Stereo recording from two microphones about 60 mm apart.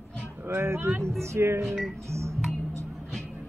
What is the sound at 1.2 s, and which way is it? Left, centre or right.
Music, right.